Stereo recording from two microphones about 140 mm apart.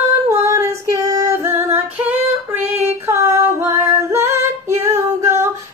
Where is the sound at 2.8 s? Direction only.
20° right (ahead or behind).